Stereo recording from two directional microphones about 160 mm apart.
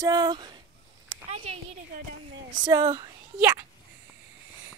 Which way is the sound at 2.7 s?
20° right (ahead or behind).